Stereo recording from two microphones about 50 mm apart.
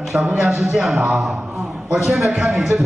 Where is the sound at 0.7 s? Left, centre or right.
Centre.